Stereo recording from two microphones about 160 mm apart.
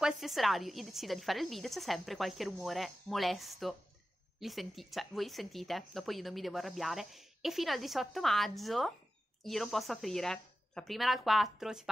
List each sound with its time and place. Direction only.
0.0 s speech: centre (ahead or behind)